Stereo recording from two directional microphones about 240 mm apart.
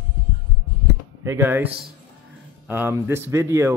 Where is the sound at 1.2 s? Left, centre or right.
Centre.